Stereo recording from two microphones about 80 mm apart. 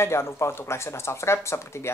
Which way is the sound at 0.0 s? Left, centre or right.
Left.